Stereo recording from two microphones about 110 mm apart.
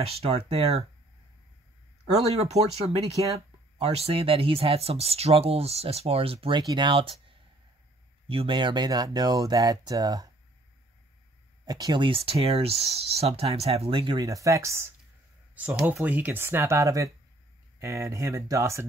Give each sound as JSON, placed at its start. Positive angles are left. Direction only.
{"t": 0.0, "sound": "speech", "side_deg": -65}
{"t": 2.2, "sound": "speech", "side_deg": -75}
{"t": 3.9, "sound": "speech", "side_deg": -65}
{"t": 6.7, "sound": "speech", "side_deg": -45}
{"t": 11.6, "sound": "speech", "side_deg": -40}
{"t": 14.2, "sound": "speech", "side_deg": -30}
{"t": 15.8, "sound": "speech", "side_deg": -15}